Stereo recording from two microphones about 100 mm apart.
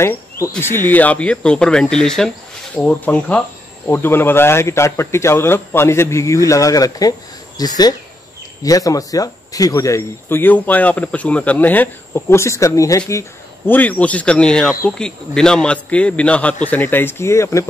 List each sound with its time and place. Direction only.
0.0 s speech: 25° left (ahead or behind)
10.3 s speech: 20° left (ahead or behind)
13.7 s speech: 15° left (ahead or behind)